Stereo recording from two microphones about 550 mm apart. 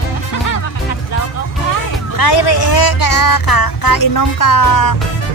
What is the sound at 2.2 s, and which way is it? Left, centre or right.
Speech, left.